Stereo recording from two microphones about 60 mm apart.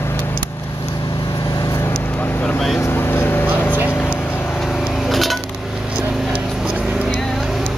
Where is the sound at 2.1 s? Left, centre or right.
Left.